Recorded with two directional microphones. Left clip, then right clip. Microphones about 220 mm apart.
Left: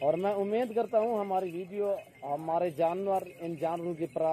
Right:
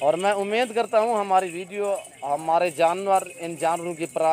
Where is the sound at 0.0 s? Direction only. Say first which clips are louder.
Right 7 dB; 45° right (ahead or behind).